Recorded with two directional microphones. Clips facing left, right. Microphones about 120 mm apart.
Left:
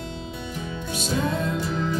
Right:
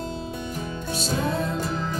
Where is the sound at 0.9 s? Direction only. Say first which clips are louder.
Left 1 dB; 35° right (ahead or behind).